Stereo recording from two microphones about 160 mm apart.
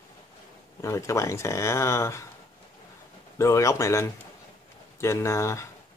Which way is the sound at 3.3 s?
20° left (ahead or behind).